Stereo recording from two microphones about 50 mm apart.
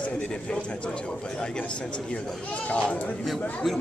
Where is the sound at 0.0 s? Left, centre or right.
Left.